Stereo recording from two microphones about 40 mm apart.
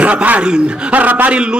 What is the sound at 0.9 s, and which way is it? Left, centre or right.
Speech, right.